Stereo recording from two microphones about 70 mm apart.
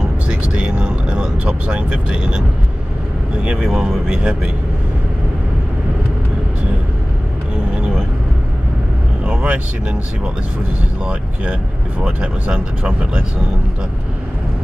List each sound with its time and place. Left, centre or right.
0.3 s vehicle: centre
3.4 s speech: centre
7.7 s vehicle: centre
9.2 s vehicle: centre
12.2 s speech: centre